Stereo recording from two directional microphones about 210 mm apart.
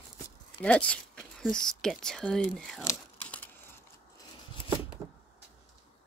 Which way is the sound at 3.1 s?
5° left (ahead or behind).